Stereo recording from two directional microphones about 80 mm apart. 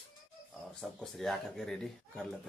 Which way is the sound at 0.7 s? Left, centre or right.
Centre.